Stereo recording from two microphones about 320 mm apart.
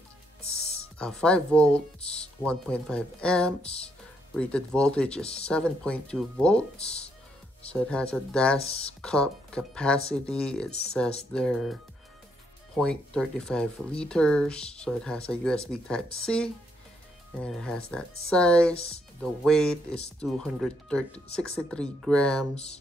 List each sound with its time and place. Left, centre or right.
0.9 s speech: centre
3.6 s speech: centre
4.4 s speech: centre
8.5 s speech: centre
9.0 s speech: centre